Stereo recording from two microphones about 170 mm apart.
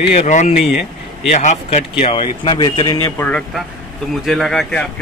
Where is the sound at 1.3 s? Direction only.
45° left (ahead or behind); by 4.8 s 5° left (ahead or behind).